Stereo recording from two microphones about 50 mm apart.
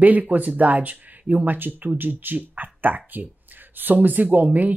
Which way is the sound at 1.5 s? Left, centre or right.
Right.